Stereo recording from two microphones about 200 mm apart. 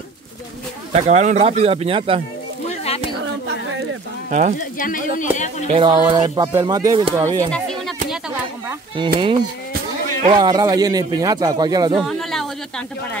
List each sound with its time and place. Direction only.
0.9 s speech: 35° right (ahead or behind)
2.7 s a sound: 30° left (ahead or behind)
4.3 s speech: 40° right (ahead or behind)
4.6 s speech: 45° left (ahead or behind)
5.7 s speech: 25° right (ahead or behind)
7.5 s music: centre (ahead or behind)
8.9 s speech: 25° right (ahead or behind)
10.3 s speech: 20° right (ahead or behind)
12.0 s a sound: centre (ahead or behind)